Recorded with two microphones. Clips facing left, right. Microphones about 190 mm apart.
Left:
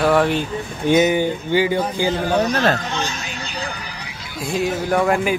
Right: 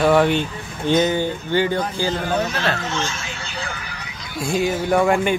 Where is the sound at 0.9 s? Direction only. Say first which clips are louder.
Left 2 dB; 15° left (ahead or behind).